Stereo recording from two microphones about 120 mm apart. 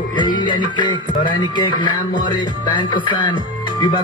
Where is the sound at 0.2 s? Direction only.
40° left (ahead or behind).